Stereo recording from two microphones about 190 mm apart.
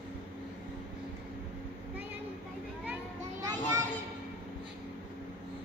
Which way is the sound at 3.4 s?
20° right (ahead or behind).